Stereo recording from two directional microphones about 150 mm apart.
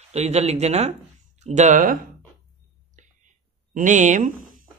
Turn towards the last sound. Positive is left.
turn(degrees=-60)  # may be behind; listen again after turning